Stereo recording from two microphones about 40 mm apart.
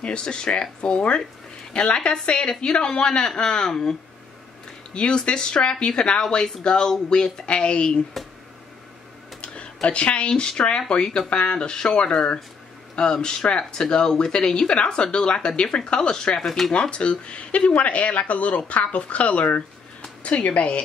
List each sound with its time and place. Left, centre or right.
0.0 s speech: left
4.9 s speech: left
9.4 s a sound: left
10.9 s speech: left
16.3 s speech: centre
16.7 s speech: left